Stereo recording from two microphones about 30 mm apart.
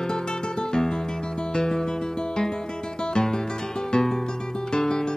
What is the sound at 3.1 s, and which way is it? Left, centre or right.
Music, centre.